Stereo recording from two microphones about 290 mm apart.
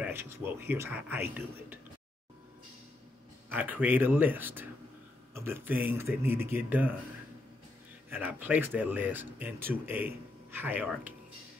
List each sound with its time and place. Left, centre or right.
0.0 s speech: centre
3.4 s speech: centre
8.1 s speech: centre